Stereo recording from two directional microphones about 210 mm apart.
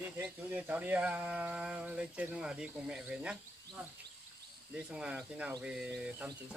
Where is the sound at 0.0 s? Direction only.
10° right (ahead or behind).